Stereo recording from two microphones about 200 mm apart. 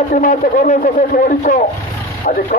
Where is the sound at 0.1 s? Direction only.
40° left (ahead or behind).